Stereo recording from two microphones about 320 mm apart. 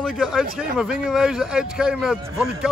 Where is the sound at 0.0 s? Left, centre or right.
Centre.